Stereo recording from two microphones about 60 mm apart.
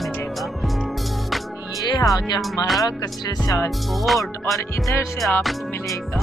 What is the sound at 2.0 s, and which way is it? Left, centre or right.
Speech, left.